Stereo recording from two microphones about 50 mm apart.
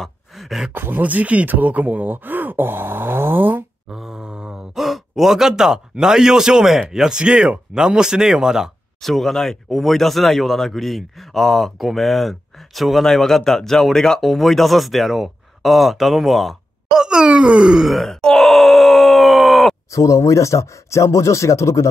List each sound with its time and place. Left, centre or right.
0.3 s a sound: centre
0.7 s speech: right
3.9 s a sound: centre
4.7 s speech: centre
9.0 s a man's voice: centre
16.8 s speech: centre
17.7 s groan: centre
19.9 s speech: left